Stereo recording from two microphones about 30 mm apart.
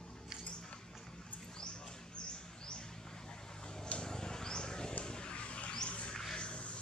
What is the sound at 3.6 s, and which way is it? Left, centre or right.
Vehicle, left.